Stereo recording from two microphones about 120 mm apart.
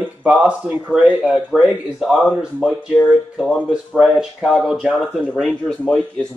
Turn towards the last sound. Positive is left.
turn(degrees=5)  # may be behind; listen again after turning